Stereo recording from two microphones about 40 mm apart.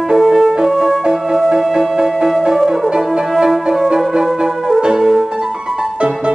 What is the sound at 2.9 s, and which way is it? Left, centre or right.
Music, centre.